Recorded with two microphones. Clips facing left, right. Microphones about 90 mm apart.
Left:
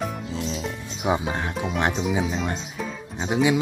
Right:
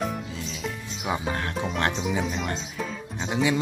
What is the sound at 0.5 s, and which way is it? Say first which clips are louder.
Music: left 3 dB; 35° left (ahead or behind).